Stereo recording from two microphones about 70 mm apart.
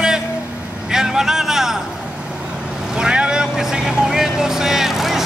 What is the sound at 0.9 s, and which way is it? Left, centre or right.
Speech, centre.